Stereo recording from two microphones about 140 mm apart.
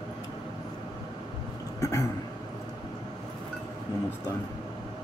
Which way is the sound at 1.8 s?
20° left (ahead or behind).